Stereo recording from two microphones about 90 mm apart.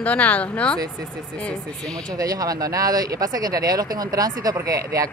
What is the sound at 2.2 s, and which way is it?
Speech, 40° right (ahead or behind).